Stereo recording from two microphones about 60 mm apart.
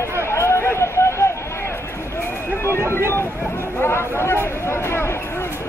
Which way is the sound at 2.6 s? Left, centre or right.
Left.